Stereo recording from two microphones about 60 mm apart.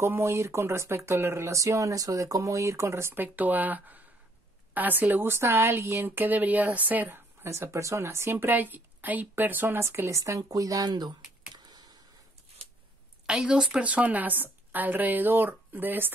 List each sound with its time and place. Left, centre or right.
0.0 s speech: right
3.2 s speech: right
7.4 s speech: right
9.8 s speech: right
13.3 s a woman's voice: centre
13.8 s speech: right